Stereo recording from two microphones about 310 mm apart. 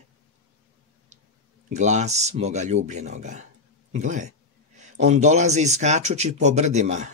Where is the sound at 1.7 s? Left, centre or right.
Right.